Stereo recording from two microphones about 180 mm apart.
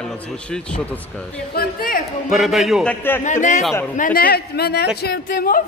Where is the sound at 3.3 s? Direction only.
40° left (ahead or behind); by 5.6 s 55° left (ahead or behind).